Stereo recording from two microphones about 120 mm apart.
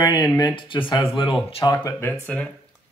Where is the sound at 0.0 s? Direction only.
30° left (ahead or behind).